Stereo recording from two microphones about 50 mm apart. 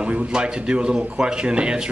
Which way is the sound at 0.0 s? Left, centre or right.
Centre.